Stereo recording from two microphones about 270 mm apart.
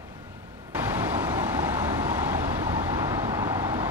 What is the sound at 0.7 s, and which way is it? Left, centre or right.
Vehicle, centre.